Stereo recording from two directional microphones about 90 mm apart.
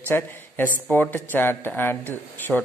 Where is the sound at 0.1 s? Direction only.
25° left (ahead or behind).